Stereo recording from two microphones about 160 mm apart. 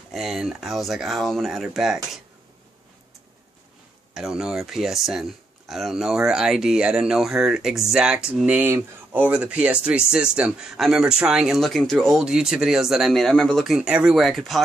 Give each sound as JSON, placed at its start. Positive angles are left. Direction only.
{"t": 0.1, "sound": "speech", "side_deg": 0}
{"t": 4.1, "sound": "speech", "side_deg": -5}